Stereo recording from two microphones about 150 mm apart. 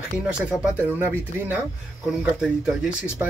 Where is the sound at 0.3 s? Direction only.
10° right (ahead or behind).